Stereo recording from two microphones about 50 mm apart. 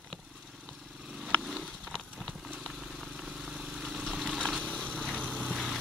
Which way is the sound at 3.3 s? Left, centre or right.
Centre.